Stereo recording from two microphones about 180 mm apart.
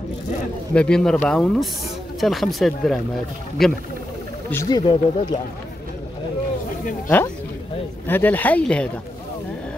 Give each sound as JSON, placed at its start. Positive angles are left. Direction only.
{"t": 0.7, "sound": "speech", "side_deg": 5}
{"t": 4.5, "sound": "speech", "side_deg": 20}
{"t": 8.1, "sound": "speech", "side_deg": 10}